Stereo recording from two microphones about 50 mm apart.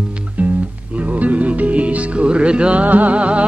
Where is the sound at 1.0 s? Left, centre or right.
Right.